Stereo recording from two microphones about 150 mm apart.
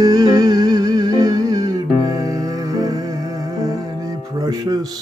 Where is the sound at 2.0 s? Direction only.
20° right (ahead or behind).